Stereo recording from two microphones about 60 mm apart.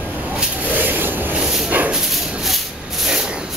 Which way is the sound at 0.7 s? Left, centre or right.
Right.